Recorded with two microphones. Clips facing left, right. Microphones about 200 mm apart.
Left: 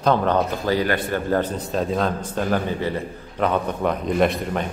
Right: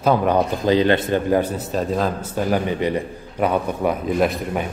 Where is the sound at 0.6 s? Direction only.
20° right (ahead or behind).